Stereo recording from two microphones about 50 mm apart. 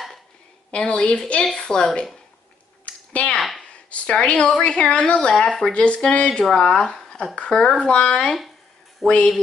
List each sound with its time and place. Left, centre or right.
0.7 s a woman's voice: left
2.8 s a sound: left
3.3 s speech: centre
3.9 s a woman's voice: left
7.0 s a sound: centre
7.3 s a woman's voice: centre
9.0 s speech: centre